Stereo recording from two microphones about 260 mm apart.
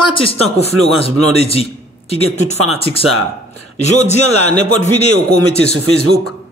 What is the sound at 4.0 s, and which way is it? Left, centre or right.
Speech, left.